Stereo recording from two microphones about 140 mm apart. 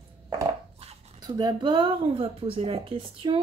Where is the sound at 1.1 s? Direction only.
30° right (ahead or behind).